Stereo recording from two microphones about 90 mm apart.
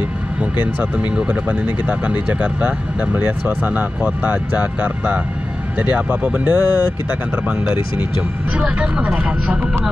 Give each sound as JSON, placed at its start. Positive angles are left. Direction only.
{"t": 0.7, "sound": "speech", "side_deg": -15}
{"t": 8.5, "sound": "speech", "side_deg": -15}